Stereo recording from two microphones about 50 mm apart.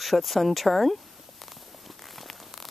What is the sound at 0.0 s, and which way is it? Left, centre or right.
Speech, centre.